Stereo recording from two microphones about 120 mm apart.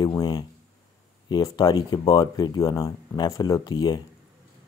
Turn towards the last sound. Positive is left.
turn(degrees=35)  # may be behind; listen again after turning